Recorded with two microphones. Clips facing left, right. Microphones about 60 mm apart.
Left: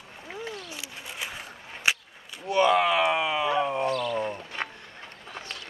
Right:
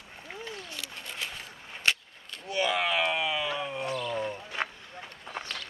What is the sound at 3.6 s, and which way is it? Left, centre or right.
Wild animals, left.